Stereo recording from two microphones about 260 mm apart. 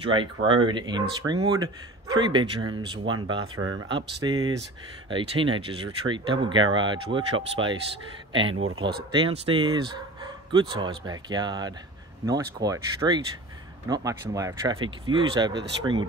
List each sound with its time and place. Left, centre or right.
0.0 s speech: centre
3.5 s speech: right
3.9 s speech: centre
8.5 s speech: right
9.1 s speech: centre